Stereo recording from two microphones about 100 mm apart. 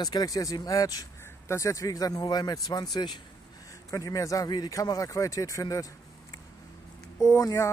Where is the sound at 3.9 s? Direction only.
35° left (ahead or behind).